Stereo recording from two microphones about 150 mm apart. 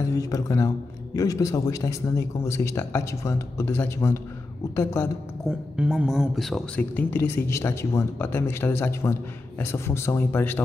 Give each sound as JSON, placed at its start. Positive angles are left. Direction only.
{"t": 0.1, "sound": "speech", "side_deg": 20}
{"t": 5.8, "sound": "speech", "side_deg": -5}